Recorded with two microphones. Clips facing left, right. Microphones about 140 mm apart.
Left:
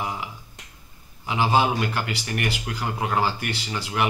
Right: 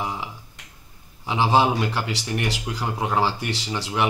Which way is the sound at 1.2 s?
25° right (ahead or behind).